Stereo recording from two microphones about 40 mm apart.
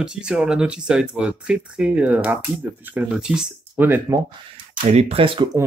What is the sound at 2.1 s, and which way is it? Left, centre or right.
Speech, right.